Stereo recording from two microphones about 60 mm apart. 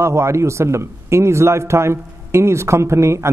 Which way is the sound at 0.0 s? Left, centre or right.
Right.